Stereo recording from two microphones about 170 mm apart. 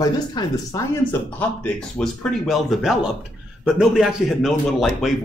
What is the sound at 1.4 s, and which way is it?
Speech, 5° left (ahead or behind).